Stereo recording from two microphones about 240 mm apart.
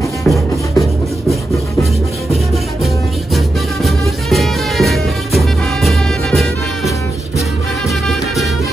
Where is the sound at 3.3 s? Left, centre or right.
Centre.